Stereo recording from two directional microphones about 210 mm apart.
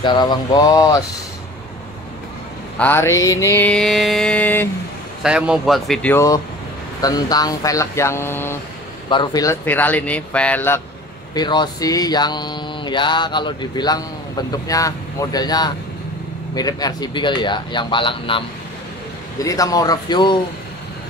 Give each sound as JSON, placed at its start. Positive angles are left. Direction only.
{"t": 0.0, "sound": "mantra", "side_deg": 20}
{"t": 2.8, "sound": "mantra", "side_deg": 10}
{"t": 5.2, "sound": "speech", "side_deg": -5}
{"t": 6.1, "sound": "mantra", "side_deg": 15}
{"t": 11.3, "sound": "mantra", "side_deg": 20}
{"t": 19.4, "sound": "mantra", "side_deg": 15}